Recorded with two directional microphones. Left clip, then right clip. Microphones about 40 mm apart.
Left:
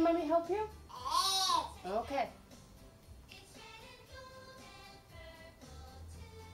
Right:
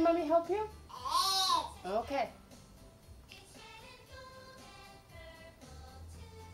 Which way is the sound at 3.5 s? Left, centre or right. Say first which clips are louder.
Even; centre.